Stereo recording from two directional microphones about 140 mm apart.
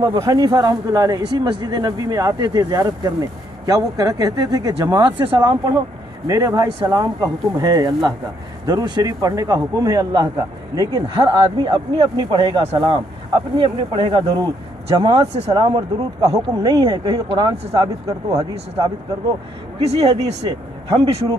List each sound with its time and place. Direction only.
0.0 s speech: 25° right (ahead or behind); by 15.5 s 45° right (ahead or behind)
15.5 s speech: 30° right (ahead or behind)
19.8 s speech: 50° right (ahead or behind)